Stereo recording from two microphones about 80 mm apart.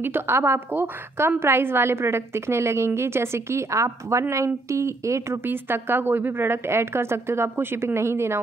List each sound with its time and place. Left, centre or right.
0.0 s speech: right